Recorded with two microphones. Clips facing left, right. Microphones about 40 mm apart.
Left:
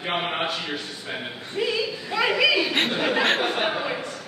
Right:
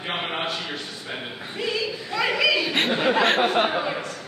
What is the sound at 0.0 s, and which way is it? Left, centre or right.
A man's voice, centre.